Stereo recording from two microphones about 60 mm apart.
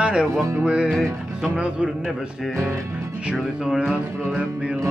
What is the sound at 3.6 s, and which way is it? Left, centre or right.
Music, centre.